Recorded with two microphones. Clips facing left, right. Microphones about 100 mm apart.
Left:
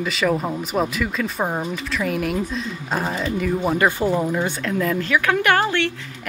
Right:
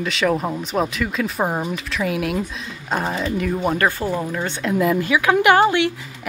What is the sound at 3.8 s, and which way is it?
Speech, 15° left (ahead or behind).